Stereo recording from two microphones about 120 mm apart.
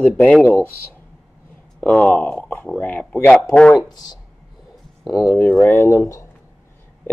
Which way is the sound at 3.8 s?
35° left (ahead or behind).